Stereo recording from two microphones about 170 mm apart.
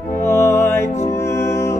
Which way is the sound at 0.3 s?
15° left (ahead or behind).